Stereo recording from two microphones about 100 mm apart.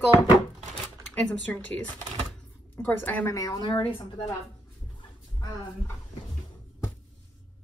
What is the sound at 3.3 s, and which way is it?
Speech, 35° left (ahead or behind).